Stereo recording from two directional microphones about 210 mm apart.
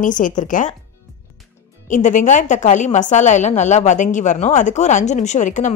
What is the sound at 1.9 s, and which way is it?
A woman's voice, 35° left (ahead or behind).